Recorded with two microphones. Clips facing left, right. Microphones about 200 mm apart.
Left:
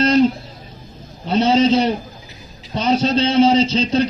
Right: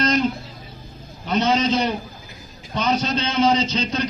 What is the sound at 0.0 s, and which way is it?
Guitar, 30° left (ahead or behind).